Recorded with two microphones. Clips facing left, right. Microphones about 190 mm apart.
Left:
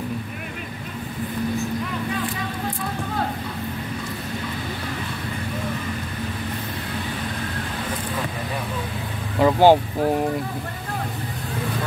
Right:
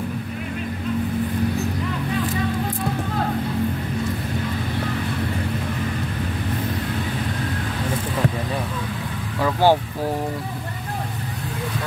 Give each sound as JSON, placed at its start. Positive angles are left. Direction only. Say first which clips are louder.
{"t": 9.4, "sound": "vehicle", "louder": "left 3 dB", "side_deg": 20}